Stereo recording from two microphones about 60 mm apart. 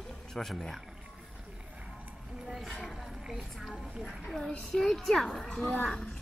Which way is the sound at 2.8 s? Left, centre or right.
Centre.